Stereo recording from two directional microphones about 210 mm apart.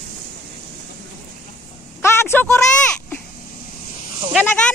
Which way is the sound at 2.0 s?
10° left (ahead or behind).